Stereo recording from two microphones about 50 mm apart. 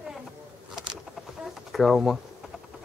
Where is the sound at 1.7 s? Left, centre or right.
Centre.